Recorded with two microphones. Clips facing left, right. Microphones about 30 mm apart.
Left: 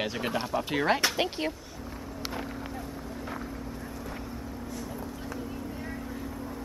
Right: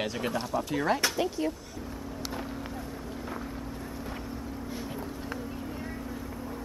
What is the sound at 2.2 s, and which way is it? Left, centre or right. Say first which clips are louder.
Vehicle: left 1 dB; centre.